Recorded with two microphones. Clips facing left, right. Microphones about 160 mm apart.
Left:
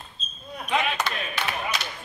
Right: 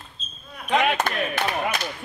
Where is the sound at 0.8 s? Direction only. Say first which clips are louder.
Right 8 dB; 55° right (ahead or behind).